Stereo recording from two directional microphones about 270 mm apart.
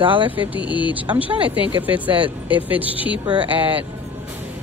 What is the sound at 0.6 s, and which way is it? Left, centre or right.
Speech, centre.